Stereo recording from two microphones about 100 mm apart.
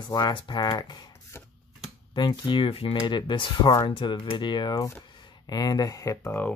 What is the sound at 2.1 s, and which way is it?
Speech, 50° left (ahead or behind).